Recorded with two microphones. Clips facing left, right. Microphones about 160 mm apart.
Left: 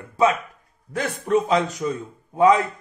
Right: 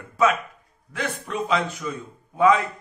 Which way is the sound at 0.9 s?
40° left (ahead or behind).